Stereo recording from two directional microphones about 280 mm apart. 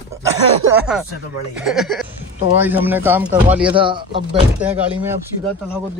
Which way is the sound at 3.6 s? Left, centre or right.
Centre.